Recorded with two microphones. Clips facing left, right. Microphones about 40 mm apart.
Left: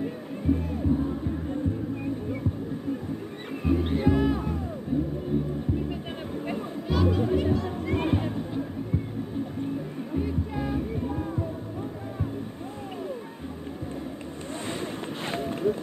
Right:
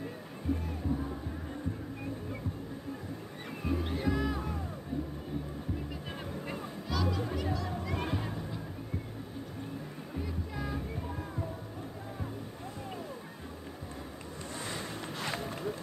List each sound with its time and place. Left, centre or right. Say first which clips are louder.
0.0 s music: left 9 dB; centre
3.6 s music: left 9 dB; left
6.3 s music: left 11 dB; centre
10.1 s music: left 10 dB; left
14.7 s vehicle: left 8 dB; left
15.5 s run: left 11 dB; left